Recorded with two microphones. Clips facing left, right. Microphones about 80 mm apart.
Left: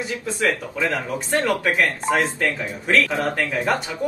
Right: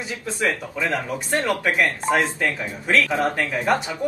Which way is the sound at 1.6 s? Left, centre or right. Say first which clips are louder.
Even; centre.